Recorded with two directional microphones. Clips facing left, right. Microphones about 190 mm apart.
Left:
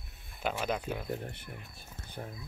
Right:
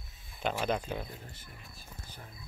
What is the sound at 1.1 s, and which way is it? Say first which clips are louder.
Speech: left 10 dB; 65° left (ahead or behind).